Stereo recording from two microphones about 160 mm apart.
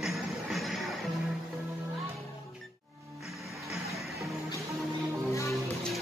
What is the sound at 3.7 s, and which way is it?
Music, centre (ahead or behind).